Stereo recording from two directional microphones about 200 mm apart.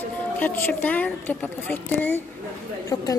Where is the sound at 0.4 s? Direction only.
10° left (ahead or behind).